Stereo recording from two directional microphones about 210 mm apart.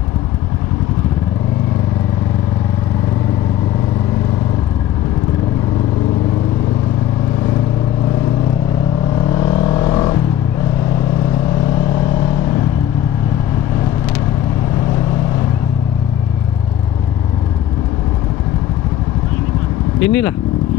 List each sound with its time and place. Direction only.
9.3 s vehicle: 20° left (ahead or behind)
20.1 s speech: 10° left (ahead or behind)